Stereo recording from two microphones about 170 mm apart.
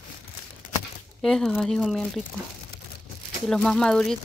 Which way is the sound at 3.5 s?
5° left (ahead or behind).